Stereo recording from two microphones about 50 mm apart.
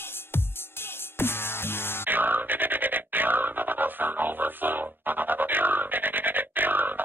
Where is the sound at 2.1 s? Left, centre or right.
Right.